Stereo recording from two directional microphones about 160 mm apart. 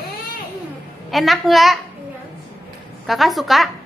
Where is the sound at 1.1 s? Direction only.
Centre (ahead or behind).